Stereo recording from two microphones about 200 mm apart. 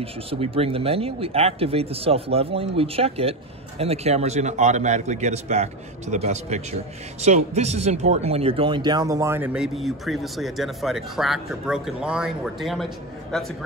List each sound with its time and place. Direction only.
0.0 s a man's voice: 30° right (ahead or behind); by 13.7 s centre (ahead or behind)